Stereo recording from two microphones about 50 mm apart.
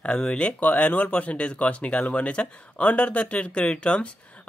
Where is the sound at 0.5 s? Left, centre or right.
Left.